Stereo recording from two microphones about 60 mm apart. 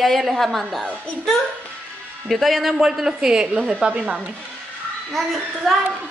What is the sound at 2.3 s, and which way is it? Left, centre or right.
A woman's voice, centre.